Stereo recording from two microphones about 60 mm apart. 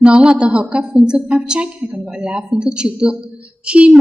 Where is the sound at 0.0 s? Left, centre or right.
Centre.